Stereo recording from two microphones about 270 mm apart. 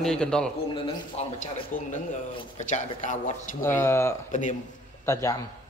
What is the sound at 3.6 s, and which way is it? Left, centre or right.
Speech, centre.